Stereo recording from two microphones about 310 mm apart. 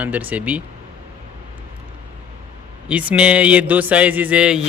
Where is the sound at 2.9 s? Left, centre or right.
Centre.